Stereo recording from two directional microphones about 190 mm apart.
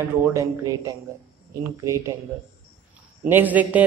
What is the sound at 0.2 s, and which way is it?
A man's voice, 15° right (ahead or behind).